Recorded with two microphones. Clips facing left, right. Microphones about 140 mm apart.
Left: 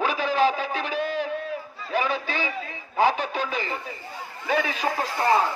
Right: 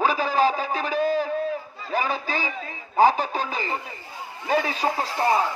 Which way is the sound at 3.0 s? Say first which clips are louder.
Right 3 dB; 35° right (ahead or behind).